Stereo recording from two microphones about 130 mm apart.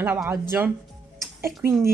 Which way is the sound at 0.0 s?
15° right (ahead or behind).